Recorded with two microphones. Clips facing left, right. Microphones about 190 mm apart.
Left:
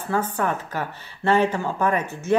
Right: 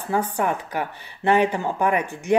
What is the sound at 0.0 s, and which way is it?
Speech, 15° right (ahead or behind).